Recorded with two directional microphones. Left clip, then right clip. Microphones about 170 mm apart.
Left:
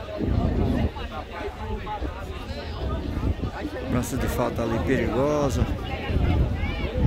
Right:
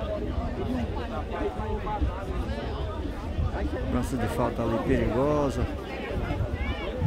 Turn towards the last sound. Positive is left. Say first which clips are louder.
# left 2 dB
turn(degrees=5)  # may be behind; listen again after turning